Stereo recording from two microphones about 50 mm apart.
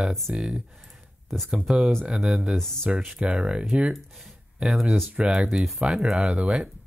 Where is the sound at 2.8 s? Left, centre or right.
Right.